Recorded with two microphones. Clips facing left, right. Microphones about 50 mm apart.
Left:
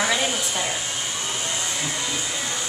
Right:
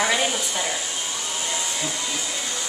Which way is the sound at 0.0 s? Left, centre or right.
Centre.